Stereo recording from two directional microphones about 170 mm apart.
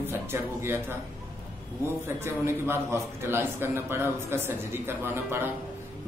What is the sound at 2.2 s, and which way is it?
A man's voice, 15° right (ahead or behind).